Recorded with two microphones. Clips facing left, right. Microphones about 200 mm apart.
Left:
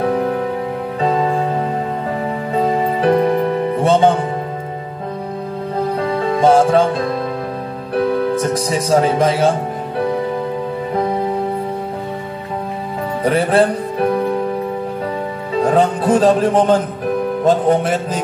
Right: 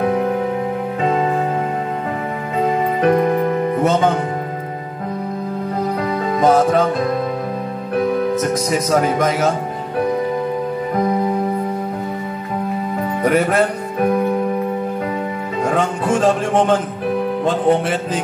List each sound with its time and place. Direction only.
3.8 s speech: 30° left (ahead or behind)
5.9 s music: 30° left (ahead or behind)
8.4 s speech: 30° left (ahead or behind)
13.2 s speech: 30° left (ahead or behind)
15.6 s speech: 35° left (ahead or behind)
17.5 s music: 40° left (ahead or behind)